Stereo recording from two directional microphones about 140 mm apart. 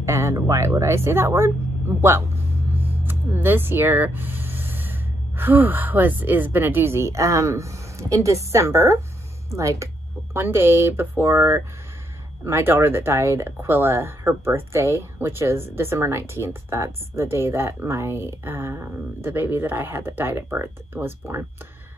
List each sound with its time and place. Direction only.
0.0 s speech: 20° right (ahead or behind)